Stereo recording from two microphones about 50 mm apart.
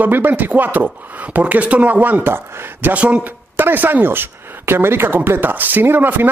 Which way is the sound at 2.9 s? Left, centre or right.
Right.